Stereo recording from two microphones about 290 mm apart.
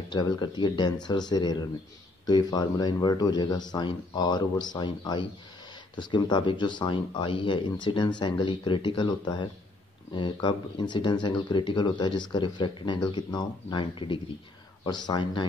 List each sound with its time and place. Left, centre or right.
0.1 s speech: centre